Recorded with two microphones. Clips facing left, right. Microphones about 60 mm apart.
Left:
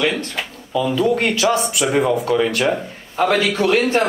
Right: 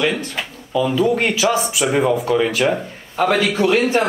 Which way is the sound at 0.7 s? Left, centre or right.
Centre.